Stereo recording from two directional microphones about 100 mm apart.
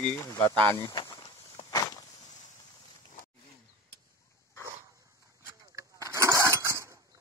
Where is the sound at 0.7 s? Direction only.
40° left (ahead or behind).